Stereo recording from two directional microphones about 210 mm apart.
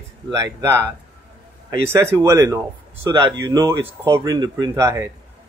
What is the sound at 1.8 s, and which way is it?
Speech, 15° right (ahead or behind).